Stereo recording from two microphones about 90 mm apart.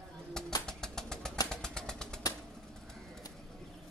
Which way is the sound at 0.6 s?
5° left (ahead or behind).